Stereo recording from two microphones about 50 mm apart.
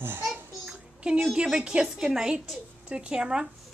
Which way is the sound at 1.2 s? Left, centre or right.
Centre.